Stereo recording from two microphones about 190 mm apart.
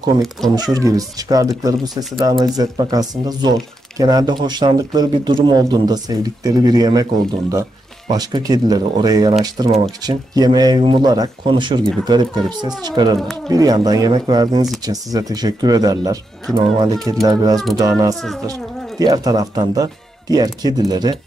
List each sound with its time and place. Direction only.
0.2 s speech: centre (ahead or behind)
0.7 s speech: 20° right (ahead or behind)
8.1 s speech: 20° right (ahead or behind)